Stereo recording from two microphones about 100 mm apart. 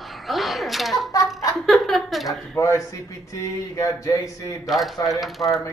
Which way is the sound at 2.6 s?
30° left (ahead or behind).